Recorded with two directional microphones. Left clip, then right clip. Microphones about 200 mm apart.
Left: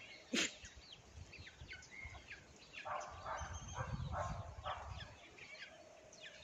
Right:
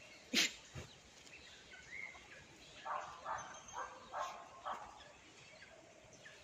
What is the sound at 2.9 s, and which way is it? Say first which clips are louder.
Bow-wow: right 2 dB; 30° left (ahead or behind).